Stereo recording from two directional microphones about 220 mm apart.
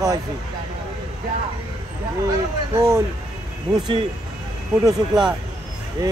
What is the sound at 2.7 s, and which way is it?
Speech, 15° right (ahead or behind).